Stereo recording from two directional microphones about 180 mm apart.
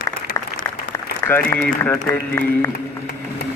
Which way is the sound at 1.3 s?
10° left (ahead or behind).